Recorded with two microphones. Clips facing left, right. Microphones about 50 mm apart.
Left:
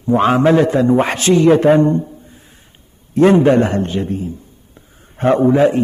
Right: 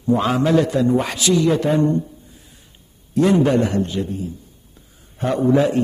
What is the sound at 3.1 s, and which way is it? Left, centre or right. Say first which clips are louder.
A man's voice: left 5 dB; left.